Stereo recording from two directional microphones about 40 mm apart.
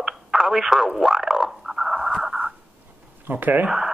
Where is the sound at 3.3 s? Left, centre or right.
Right.